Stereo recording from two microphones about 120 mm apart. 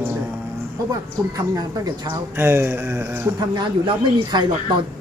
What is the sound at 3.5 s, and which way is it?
Speech, 40° right (ahead or behind).